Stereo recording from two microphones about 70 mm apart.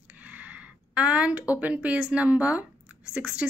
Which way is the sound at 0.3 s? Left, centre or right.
Right.